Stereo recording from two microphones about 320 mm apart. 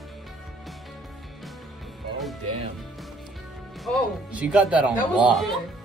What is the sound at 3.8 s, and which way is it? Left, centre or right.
Speech, centre.